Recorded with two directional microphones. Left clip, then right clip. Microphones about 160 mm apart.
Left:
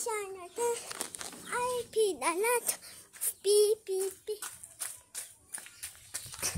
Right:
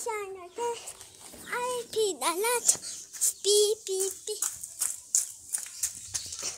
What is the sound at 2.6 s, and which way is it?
Dog, 20° left (ahead or behind).